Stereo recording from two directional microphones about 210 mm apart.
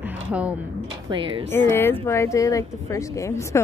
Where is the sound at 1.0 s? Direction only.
25° right (ahead or behind).